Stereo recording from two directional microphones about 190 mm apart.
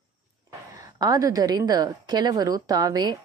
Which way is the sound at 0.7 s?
20° right (ahead or behind).